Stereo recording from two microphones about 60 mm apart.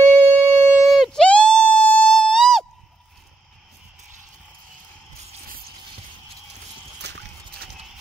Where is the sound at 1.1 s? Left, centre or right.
Centre.